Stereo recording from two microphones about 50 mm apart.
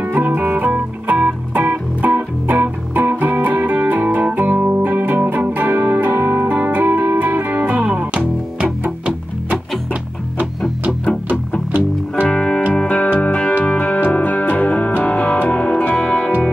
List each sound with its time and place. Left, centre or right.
0.3 s music: right
0.7 s music: right
12.3 s music: centre